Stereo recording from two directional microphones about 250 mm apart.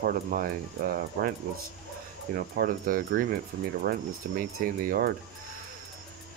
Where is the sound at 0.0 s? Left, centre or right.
Right.